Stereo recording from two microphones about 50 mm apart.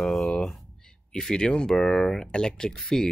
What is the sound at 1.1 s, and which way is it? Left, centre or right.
Speech, centre.